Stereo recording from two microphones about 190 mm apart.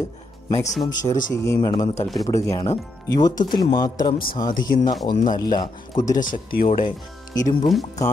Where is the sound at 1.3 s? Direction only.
15° left (ahead or behind).